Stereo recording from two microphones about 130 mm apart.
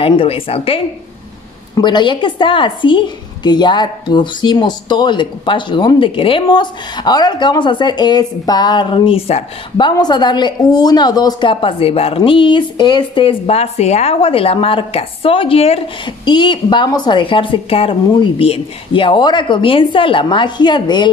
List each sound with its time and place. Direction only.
0.0 s speech: 45° left (ahead or behind)
1.8 s a woman's voice: 35° left (ahead or behind)
16.3 s a woman's voice: 35° left (ahead or behind)